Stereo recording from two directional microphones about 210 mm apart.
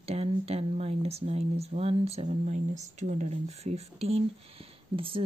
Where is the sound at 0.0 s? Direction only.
30° right (ahead or behind).